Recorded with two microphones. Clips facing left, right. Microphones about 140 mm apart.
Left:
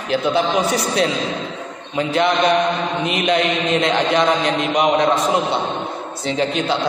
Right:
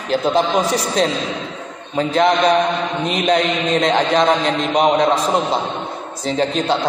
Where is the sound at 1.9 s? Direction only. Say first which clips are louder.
Right 2 dB; 35° right (ahead or behind).